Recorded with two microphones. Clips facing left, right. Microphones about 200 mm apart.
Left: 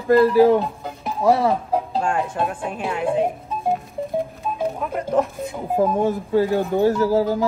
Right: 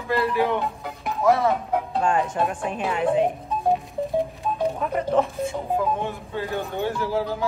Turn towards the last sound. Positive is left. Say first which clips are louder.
# left 7 dB
turn(degrees=40)  # may be behind; listen again after turning